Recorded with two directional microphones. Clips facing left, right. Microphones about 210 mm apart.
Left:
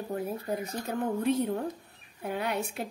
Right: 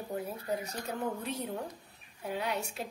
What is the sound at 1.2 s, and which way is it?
A woman's voice, 55° left (ahead or behind).